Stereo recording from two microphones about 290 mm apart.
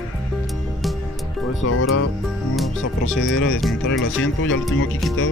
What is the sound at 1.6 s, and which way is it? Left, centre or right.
Speech, left.